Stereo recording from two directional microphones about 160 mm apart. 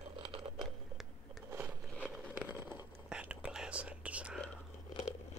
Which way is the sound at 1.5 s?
10° right (ahead or behind).